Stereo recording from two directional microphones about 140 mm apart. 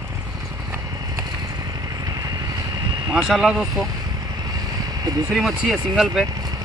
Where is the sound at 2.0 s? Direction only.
25° right (ahead or behind).